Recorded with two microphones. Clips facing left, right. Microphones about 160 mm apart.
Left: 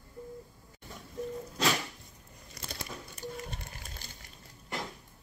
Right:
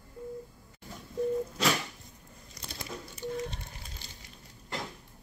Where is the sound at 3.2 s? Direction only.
45° left (ahead or behind).